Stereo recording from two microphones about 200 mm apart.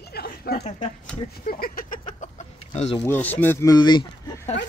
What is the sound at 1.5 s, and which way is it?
Vehicle, 45° left (ahead or behind).